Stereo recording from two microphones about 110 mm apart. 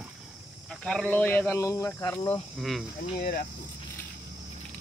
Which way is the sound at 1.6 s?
30° left (ahead or behind).